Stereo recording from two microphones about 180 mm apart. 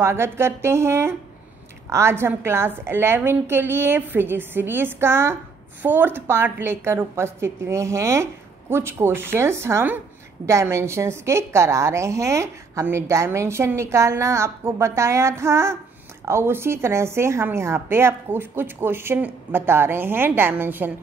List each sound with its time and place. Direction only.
0.0 s a woman's voice: 15° right (ahead or behind)